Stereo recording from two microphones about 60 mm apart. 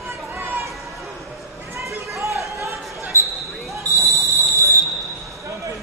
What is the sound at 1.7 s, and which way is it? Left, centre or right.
Basketball bounce, right.